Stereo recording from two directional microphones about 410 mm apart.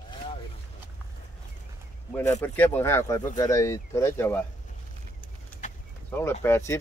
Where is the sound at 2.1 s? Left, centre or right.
Centre.